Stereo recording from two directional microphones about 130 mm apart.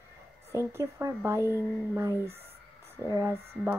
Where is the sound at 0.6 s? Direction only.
20° right (ahead or behind).